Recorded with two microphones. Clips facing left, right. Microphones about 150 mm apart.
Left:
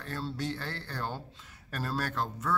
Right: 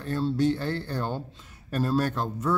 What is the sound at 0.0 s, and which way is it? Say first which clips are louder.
A man's voice: right 11 dB; 20° right (ahead or behind).